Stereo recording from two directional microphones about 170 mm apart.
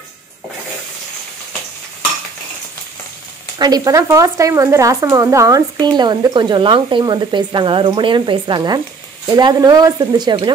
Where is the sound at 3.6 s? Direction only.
20° right (ahead or behind).